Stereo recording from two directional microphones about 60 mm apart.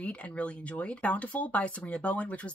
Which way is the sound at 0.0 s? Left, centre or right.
Left.